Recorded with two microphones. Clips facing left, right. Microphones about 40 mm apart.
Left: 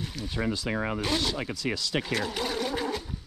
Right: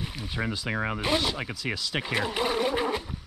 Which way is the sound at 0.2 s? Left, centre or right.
Centre.